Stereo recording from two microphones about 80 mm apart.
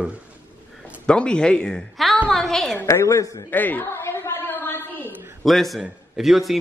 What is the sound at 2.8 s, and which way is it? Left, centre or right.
Speech, left.